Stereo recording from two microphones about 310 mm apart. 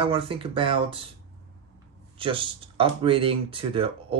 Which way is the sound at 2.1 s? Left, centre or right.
Centre.